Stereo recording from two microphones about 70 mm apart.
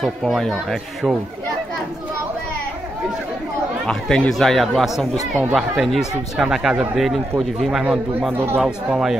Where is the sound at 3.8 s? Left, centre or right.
Centre.